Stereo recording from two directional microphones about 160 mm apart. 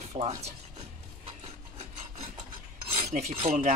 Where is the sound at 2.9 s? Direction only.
40° right (ahead or behind).